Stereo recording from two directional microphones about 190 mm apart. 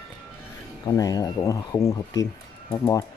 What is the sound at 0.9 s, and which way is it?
Speech, 20° left (ahead or behind).